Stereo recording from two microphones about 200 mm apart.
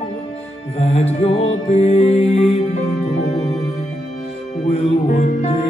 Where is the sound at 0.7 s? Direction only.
30° left (ahead or behind).